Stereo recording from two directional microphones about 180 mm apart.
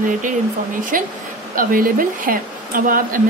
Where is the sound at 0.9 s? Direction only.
50° right (ahead or behind).